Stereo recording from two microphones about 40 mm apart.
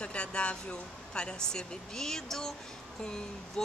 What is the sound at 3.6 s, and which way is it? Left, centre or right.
Speech, left.